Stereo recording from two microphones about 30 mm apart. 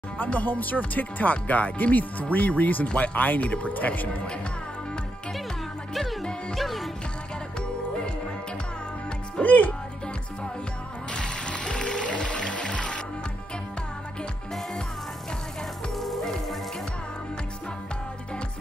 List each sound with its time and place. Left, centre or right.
0.3 s speech: left
2.0 s speech: left
6.5 s music: centre
9.4 s speech: left
11.1 s music: left
16.0 s music: centre